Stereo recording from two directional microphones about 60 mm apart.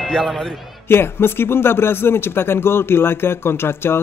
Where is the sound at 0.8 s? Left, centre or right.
Left.